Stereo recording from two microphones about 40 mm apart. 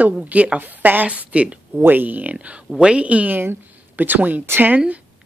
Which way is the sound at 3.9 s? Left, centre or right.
Right.